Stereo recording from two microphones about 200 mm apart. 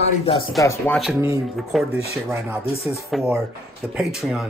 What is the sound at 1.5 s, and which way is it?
Speech, centre (ahead or behind).